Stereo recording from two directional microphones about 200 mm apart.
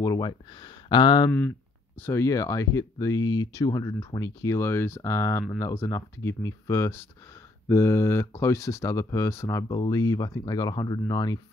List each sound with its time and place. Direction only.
0.0 s speech: 20° left (ahead or behind)
2.0 s speech: 10° left (ahead or behind)